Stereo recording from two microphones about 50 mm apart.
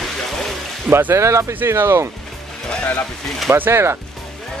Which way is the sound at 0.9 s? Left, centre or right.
Right.